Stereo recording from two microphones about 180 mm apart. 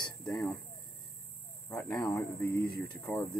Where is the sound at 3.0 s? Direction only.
5° left (ahead or behind).